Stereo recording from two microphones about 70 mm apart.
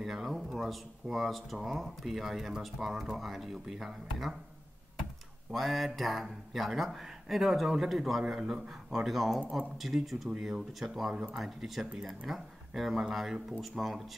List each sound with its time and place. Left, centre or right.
0.0 s speech: centre
5.5 s speech: centre
9.4 s speech: centre
9.8 s speech: centre